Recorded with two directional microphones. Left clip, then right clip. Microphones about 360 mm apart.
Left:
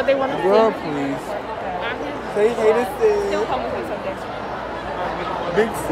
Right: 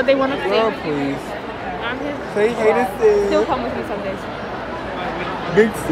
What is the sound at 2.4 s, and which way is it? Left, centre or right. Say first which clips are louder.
Speech: right 1 dB; centre.